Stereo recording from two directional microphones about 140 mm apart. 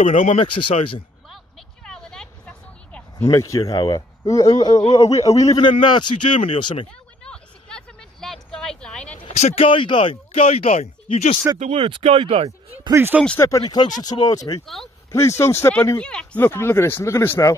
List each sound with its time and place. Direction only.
0.0 s speech: 60° left (ahead or behind)
0.7 s speech: 40° left (ahead or behind)
1.9 s vehicle: 5° left (ahead or behind)
3.2 s a man's voice: 20° left (ahead or behind); by 6.9 s 40° left (ahead or behind)
7.2 s a sound: 5° left (ahead or behind)
9.3 s speech: 50° left (ahead or behind)
9.7 s speech: 35° left (ahead or behind)
11.5 s speech: 50° right (ahead or behind)
12.9 s speech: 15° right (ahead or behind)
13.7 s a man's voice: 30° left (ahead or behind)
16.0 s speech: 5° left (ahead or behind)